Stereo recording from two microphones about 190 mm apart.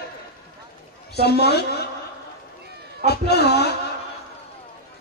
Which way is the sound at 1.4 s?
60° left (ahead or behind).